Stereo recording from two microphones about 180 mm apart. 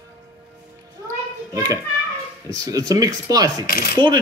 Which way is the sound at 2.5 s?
20° right (ahead or behind).